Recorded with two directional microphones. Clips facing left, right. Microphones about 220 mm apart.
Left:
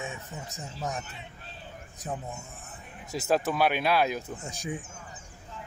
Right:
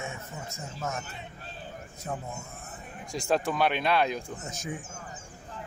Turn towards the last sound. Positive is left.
turn(degrees=10)  # may be behind; listen again after turning